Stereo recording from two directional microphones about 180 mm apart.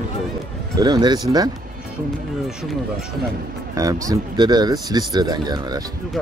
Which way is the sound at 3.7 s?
20° right (ahead or behind).